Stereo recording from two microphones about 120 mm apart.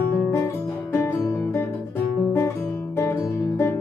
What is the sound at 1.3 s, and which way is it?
Music, 20° left (ahead or behind).